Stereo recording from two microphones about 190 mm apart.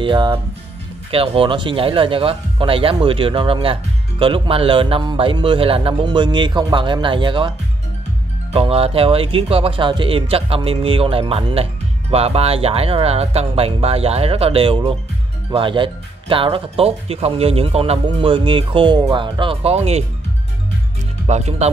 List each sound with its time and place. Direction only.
0.0 s speech: 25° right (ahead or behind)
8.5 s speech: 30° right (ahead or behind)
21.3 s speech: 35° right (ahead or behind)